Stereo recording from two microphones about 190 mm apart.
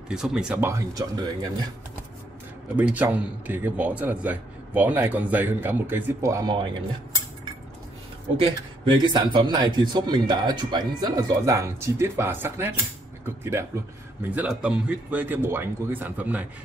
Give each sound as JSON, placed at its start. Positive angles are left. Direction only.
{"t": 0.1, "sound": "a man's voice", "side_deg": -5}
{"t": 2.7, "sound": "a man's voice", "side_deg": -10}
{"t": 8.4, "sound": "a man's voice", "side_deg": -25}